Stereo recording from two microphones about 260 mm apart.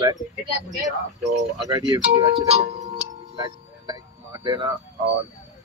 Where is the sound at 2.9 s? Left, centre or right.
Centre.